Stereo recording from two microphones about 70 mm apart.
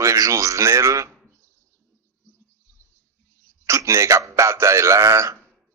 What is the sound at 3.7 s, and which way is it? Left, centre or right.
Speech, right.